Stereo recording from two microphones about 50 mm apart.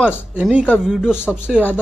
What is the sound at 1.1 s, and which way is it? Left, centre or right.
Speech, left.